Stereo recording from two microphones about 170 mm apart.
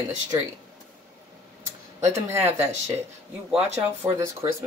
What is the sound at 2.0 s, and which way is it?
Speech, 15° right (ahead or behind).